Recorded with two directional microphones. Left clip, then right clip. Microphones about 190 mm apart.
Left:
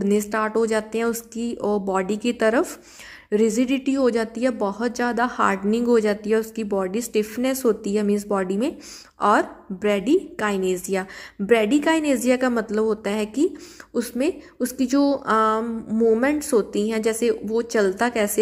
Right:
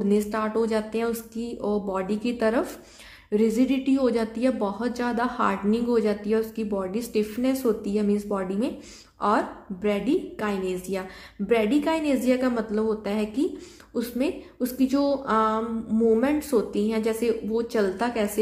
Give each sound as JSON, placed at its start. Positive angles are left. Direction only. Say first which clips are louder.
{"t": 0.0, "sound": "speech", "louder": "left 3 dB", "side_deg": 35}